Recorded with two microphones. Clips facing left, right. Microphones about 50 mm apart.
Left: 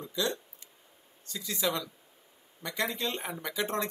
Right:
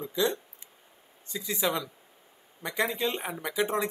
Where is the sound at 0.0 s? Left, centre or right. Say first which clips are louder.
Right 4 dB; right.